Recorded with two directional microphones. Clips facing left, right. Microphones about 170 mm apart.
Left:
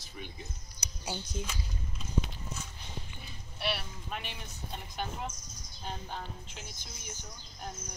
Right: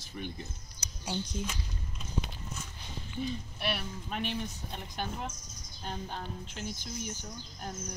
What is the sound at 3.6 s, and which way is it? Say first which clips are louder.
Speech: left 1 dB; centre (ahead or behind).